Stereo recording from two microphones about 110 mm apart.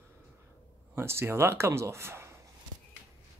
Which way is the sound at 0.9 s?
20° right (ahead or behind).